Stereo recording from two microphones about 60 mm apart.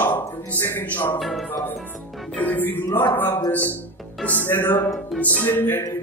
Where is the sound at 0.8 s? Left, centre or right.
Left.